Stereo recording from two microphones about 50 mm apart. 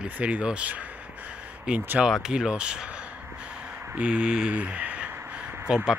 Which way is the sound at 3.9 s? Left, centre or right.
Right.